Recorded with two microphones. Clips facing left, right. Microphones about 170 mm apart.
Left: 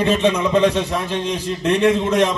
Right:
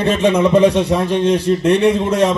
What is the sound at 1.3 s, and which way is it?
Speech, 65° right (ahead or behind).